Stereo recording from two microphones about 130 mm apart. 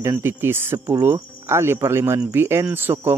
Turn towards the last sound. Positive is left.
turn(degrees=-15)  # may be behind; listen again after turning